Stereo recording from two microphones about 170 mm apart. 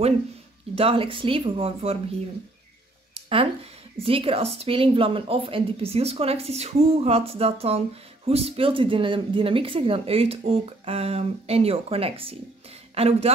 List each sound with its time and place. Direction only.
0.7 s a woman's voice: 35° right (ahead or behind)
3.2 s a sound: 35° right (ahead or behind)
4.0 s a woman's voice: 35° right (ahead or behind)